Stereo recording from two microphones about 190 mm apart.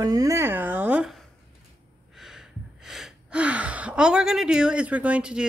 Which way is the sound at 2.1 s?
Centre (ahead or behind).